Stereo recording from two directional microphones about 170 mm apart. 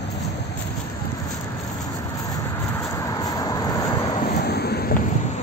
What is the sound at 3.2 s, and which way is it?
Vehicle, 20° left (ahead or behind).